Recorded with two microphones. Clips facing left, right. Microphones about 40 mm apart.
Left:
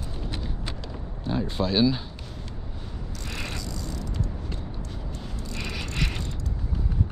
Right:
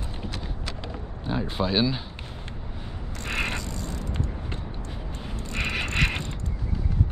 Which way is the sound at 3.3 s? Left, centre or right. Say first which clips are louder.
Right 6 dB; right.